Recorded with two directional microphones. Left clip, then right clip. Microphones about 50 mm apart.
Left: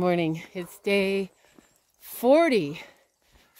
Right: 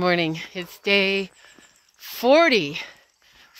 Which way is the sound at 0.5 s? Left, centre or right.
Centre.